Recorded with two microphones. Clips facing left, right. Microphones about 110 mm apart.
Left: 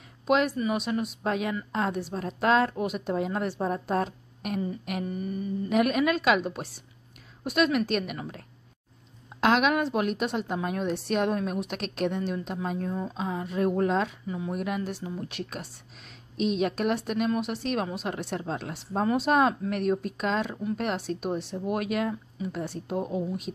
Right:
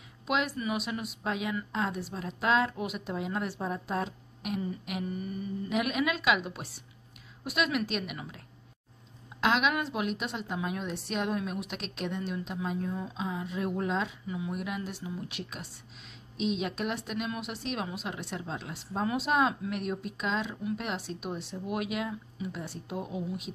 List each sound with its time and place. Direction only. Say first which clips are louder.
0.3 s a woman's voice: left 6 dB; 40° left (ahead or behind)
5.0 s speech: left 3 dB; 35° left (ahead or behind)
5.7 s a woman's voice: left 6 dB; 45° left (ahead or behind)
9.4 s a woman's voice: left 5 dB; 50° left (ahead or behind)
12.9 s speech: left 4 dB; 35° left (ahead or behind)
13.2 s a woman's voice: left 7 dB; 50° left (ahead or behind)
14.2 s speech: left 4 dB; 35° left (ahead or behind)
16.3 s a woman's voice: left 5 dB; 50° left (ahead or behind)